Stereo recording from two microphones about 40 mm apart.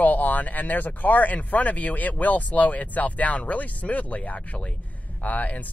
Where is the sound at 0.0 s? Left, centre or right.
Left.